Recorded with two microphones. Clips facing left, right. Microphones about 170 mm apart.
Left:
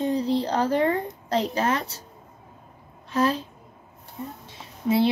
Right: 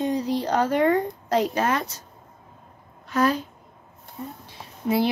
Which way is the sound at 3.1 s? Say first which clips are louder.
Right 1 dB; 30° left (ahead or behind).